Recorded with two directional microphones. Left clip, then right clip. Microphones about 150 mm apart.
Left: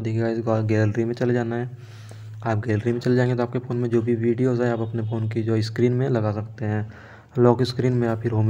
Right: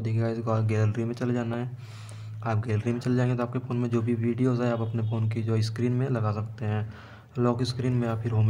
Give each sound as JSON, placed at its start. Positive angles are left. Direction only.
{"t": 0.5, "sound": "speech", "side_deg": 25}
{"t": 3.8, "sound": "speech", "side_deg": 15}
{"t": 4.5, "sound": "speech", "side_deg": 25}
{"t": 5.8, "sound": "speech", "side_deg": 40}
{"t": 6.3, "sound": "speech", "side_deg": 20}
{"t": 7.3, "sound": "speech", "side_deg": 45}
{"t": 8.0, "sound": "speech", "side_deg": 35}